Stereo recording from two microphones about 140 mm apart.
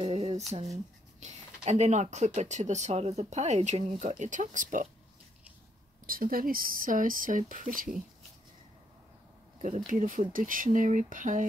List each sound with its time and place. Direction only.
0.0 s a sound: 45° right (ahead or behind)
0.5 s speech: 50° right (ahead or behind)
4.2 s speech: 65° right (ahead or behind)
6.0 s speech: 90° right; by 7.9 s 75° right (ahead or behind)
9.8 s speech: 70° right (ahead or behind)